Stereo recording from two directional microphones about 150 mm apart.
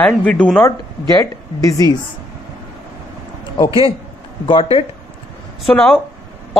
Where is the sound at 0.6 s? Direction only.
20° left (ahead or behind).